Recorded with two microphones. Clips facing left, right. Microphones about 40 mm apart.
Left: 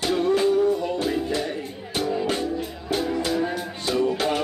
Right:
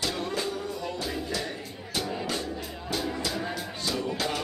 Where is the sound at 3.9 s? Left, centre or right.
Left.